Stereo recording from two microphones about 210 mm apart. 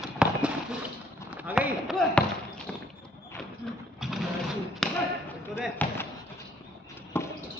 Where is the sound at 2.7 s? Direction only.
5° left (ahead or behind).